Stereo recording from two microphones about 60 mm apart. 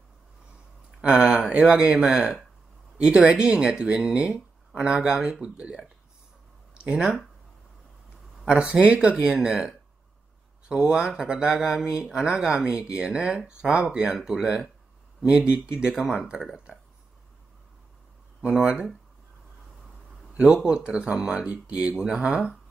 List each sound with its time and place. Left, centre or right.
1.0 s speech: centre
8.5 s speech: centre
18.5 s speech: centre
20.3 s speech: centre